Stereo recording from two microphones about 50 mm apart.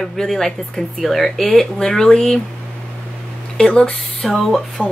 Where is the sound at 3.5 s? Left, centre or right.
Centre.